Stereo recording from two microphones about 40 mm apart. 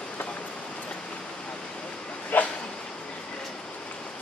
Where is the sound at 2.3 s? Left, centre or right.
Left.